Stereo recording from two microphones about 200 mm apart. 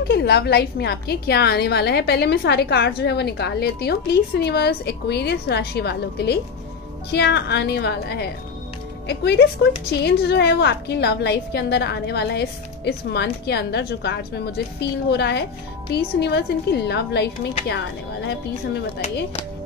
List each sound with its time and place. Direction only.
0.1 s a woman's voice: 55° left (ahead or behind)